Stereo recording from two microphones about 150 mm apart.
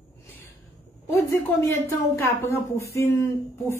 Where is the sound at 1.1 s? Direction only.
20° left (ahead or behind).